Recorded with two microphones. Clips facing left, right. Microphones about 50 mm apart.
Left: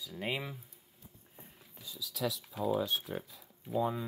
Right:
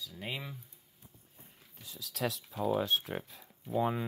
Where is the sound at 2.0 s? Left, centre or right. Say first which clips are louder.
Even; right.